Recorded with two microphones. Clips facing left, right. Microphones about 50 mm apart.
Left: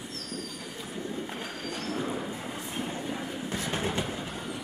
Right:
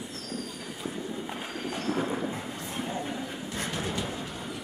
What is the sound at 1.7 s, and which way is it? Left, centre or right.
Thunder, right.